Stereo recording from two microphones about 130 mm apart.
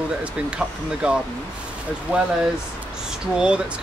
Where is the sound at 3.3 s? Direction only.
10° right (ahead or behind).